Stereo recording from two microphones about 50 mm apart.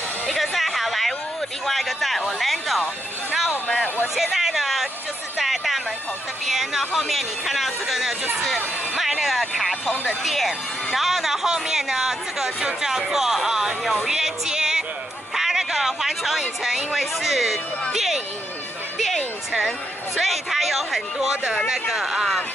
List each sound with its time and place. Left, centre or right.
0.3 s music: centre
1.7 s speech: centre
3.6 s speech: left
4.1 s speech: centre
5.4 s music: centre
6.4 s speech: centre
15.3 s a sound: centre
17.9 s speech: centre
18.9 s music: centre
20.2 s speech: centre